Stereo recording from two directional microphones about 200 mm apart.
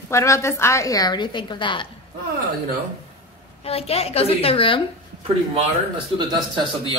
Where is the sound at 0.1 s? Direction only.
15° left (ahead or behind).